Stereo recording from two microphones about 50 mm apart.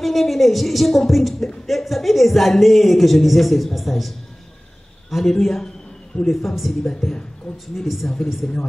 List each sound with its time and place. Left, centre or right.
0.0 s speech: centre
5.1 s a man's voice: centre